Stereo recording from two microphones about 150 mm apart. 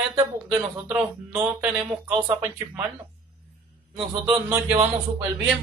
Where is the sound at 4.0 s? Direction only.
35° right (ahead or behind).